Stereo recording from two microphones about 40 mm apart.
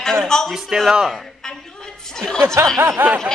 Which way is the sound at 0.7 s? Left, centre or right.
Centre.